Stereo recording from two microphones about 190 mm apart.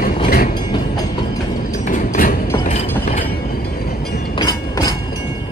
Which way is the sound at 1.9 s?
45° left (ahead or behind).